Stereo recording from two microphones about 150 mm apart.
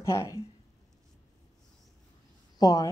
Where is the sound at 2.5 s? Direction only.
25° left (ahead or behind).